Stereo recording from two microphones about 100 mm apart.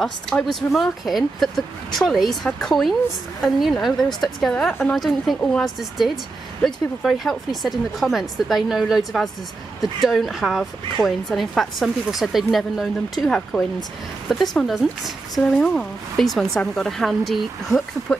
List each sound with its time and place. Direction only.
0.0 s speech: 5° left (ahead or behind)
4.6 s a woman's voice: 20° left (ahead or behind)
5.3 s speech: 5° left (ahead or behind)